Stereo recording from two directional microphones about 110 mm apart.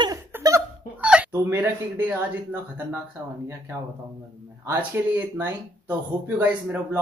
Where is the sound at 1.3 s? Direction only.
25° right (ahead or behind).